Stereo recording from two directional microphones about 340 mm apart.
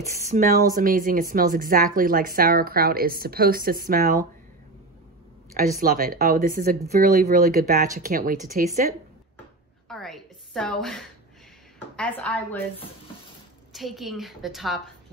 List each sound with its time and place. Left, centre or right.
0.0 s speech: right
5.8 s speech: right
9.8 s a sound: centre
12.0 s a woman's voice: centre
13.7 s a woman's voice: centre